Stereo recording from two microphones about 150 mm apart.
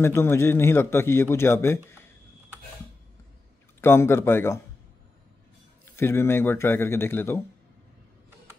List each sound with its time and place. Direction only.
0.0 s a man's voice: 15° left (ahead or behind)
3.8 s a man's voice: 15° left (ahead or behind)
5.9 s a man's voice: 15° left (ahead or behind)